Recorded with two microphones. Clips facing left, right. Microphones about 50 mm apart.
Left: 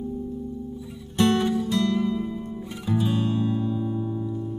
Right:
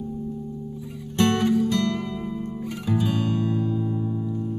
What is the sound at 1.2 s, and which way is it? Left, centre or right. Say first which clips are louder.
Music: even; right.